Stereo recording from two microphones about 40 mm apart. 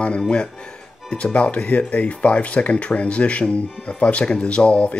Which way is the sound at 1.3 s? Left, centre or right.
Left.